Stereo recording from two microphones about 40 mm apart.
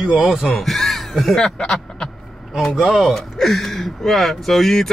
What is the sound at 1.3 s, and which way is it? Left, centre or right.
Speech, left.